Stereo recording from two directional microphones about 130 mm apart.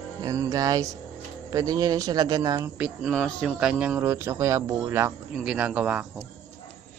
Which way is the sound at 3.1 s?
5° left (ahead or behind).